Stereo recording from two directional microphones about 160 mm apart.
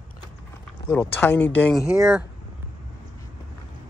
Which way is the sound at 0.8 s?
10° left (ahead or behind).